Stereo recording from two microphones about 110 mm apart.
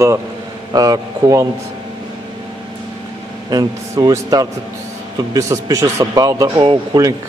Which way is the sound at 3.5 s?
35° right (ahead or behind).